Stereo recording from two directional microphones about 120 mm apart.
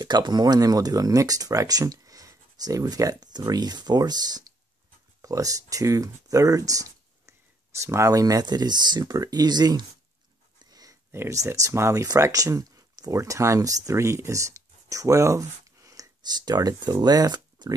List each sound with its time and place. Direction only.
0.0 s speech: 40° right (ahead or behind)
10.6 s a sound: 30° right (ahead or behind)
11.1 s speech: 20° right (ahead or behind)